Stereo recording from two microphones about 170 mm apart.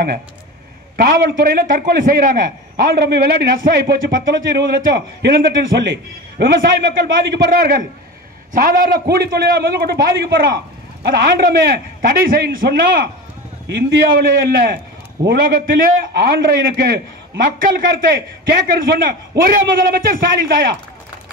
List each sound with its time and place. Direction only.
0.9 s a man's voice: 60° right (ahead or behind)